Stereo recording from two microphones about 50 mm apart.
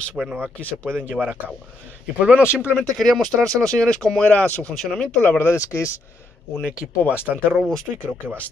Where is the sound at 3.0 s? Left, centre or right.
Centre.